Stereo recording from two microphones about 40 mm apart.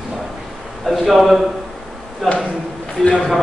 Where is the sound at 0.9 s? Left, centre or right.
Centre.